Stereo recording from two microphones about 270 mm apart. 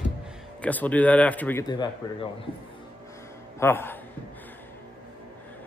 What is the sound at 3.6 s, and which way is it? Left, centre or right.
Speech, centre.